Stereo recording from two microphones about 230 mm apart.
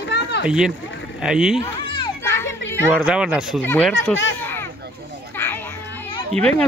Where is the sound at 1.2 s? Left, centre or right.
Centre.